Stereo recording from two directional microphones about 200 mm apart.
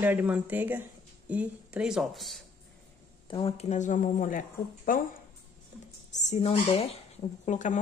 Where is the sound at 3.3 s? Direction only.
30° left (ahead or behind).